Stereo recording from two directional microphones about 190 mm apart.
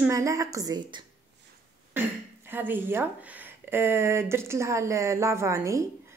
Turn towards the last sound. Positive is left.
turn(degrees=-15)  # may be behind; listen again after turning